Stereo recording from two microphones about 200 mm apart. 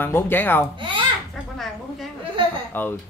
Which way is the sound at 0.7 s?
25° right (ahead or behind).